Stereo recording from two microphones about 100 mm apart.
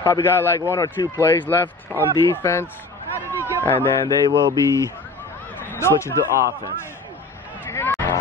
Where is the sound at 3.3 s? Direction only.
25° left (ahead or behind).